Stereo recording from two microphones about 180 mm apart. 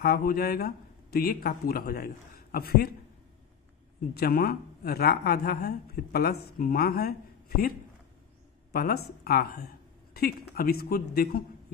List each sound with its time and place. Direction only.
0.0 s speech: 55° left (ahead or behind)
4.1 s speech: 60° left (ahead or behind)
8.7 s speech: 60° left (ahead or behind)